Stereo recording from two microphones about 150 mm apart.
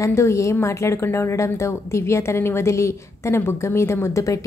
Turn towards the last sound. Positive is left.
turn(degrees=20)  # may be behind; listen again after turning